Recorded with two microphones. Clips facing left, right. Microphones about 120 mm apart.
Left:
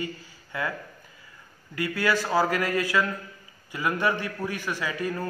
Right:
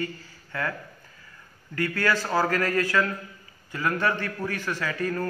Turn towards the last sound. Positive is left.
turn(degrees=15)  # may be behind; listen again after turning